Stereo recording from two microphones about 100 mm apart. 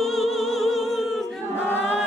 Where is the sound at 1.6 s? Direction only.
20° left (ahead or behind).